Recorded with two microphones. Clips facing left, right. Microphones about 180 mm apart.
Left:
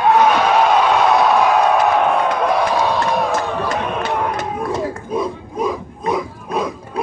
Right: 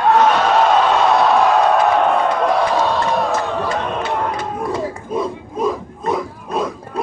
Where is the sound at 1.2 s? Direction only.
Centre (ahead or behind).